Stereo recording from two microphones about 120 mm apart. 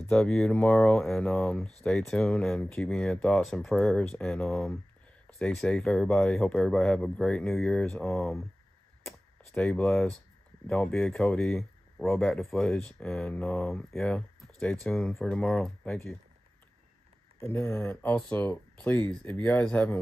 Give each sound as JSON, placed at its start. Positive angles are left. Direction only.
{"t": 0.1, "sound": "speech", "side_deg": 5}
{"t": 9.5, "sound": "speech", "side_deg": 10}
{"t": 17.4, "sound": "speech", "side_deg": 20}